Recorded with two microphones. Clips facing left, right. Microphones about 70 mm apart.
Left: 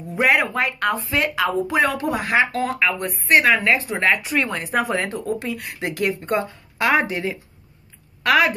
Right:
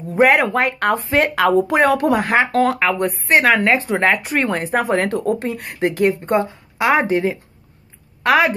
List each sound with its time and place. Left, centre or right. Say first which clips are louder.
0.1 s speech: right 5 dB; right
4.9 s speech: right 6 dB; right
7.1 s a woman's voice: right 8 dB; right